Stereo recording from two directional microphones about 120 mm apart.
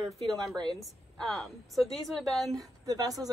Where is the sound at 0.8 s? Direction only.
Centre (ahead or behind).